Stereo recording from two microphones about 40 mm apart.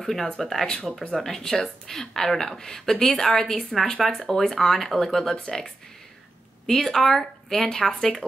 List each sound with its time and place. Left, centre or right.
0.0 s speech: centre
0.7 s speech: centre
6.6 s speech: centre